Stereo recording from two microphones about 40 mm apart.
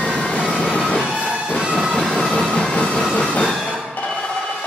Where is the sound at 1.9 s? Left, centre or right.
Centre.